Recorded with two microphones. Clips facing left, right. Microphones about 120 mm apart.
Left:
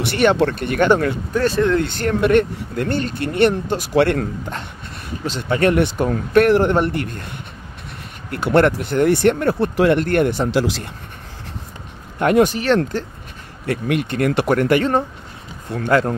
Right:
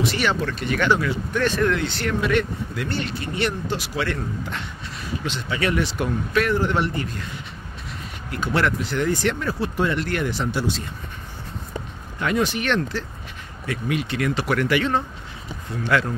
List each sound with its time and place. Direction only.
0.0 s speech: 60° left (ahead or behind); by 1.6 s 35° left (ahead or behind)
1.8 s speech: 50° left (ahead or behind); by 4.3 s 65° left (ahead or behind)
5.4 s speech: 50° left (ahead or behind)
8.3 s speech: 60° left (ahead or behind)
10.5 s speech: 90° left
12.2 s speech: 55° left (ahead or behind)
12.5 s speech: 40° left (ahead or behind)
13.7 s speech: 55° left (ahead or behind)